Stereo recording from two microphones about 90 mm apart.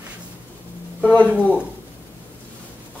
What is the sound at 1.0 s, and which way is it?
Speech, 15° left (ahead or behind).